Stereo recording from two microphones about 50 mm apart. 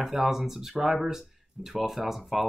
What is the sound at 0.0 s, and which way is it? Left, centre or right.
Speech, centre.